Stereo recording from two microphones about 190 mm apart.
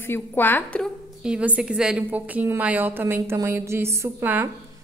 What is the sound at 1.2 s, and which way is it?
A woman's voice, 5° right (ahead or behind).